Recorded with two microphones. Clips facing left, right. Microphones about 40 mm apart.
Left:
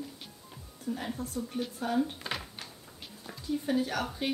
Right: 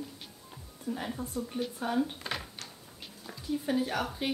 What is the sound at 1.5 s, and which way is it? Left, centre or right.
Speech, centre.